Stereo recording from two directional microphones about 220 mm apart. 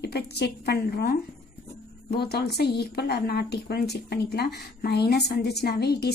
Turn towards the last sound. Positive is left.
turn(degrees=45)  # may be behind; listen again after turning